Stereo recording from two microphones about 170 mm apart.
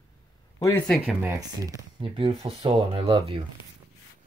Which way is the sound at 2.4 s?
35° right (ahead or behind).